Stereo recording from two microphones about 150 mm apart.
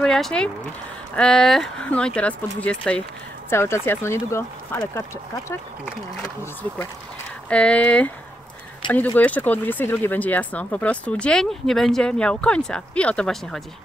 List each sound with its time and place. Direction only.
0.0 s speech: 5° left (ahead or behind)
7.4 s speech: 10° left (ahead or behind)